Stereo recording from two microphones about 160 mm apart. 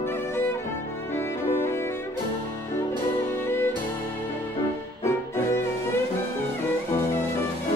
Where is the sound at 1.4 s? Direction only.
15° left (ahead or behind).